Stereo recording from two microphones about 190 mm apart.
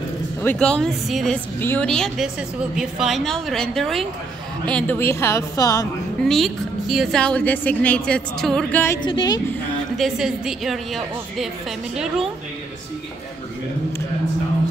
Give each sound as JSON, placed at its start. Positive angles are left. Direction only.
{"t": 0.4, "sound": "a woman's voice", "side_deg": 5}
{"t": 6.2, "sound": "speech", "side_deg": 0}
{"t": 9.0, "sound": "a woman's voice", "side_deg": 25}
{"t": 9.5, "sound": "speech", "side_deg": 0}